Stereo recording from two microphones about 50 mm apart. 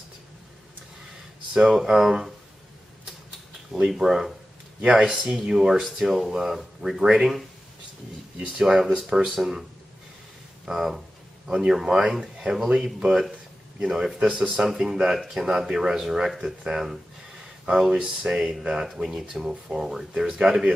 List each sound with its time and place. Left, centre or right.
1.5 s speech: centre
3.7 s speech: centre
14.2 s speech: right
14.6 s speech: centre
18.0 s speech: centre